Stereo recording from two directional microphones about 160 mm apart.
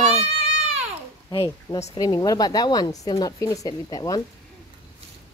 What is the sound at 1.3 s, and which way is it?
Speech, 35° left (ahead or behind).